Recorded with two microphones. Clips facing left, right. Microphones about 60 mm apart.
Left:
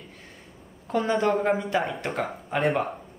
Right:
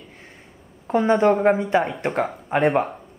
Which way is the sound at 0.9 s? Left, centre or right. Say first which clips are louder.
Right 5 dB; right.